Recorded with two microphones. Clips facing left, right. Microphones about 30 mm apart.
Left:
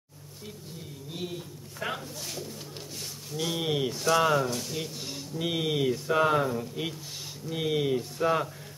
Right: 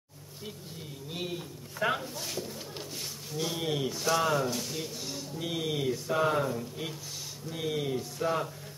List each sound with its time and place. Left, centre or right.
1.1 s speech: centre
3.3 s speech: centre
3.5 s speech: centre
4.4 s speech: centre
5.4 s speech: left